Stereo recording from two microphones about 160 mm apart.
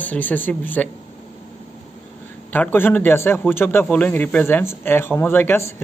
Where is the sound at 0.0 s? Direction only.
10° left (ahead or behind).